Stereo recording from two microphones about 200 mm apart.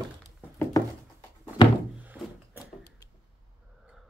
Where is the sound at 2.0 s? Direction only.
10° right (ahead or behind).